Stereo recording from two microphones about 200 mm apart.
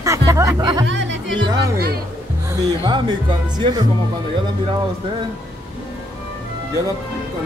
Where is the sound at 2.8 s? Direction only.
25° right (ahead or behind).